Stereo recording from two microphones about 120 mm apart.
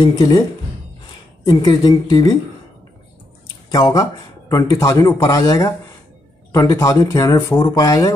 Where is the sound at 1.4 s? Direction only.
30° left (ahead or behind).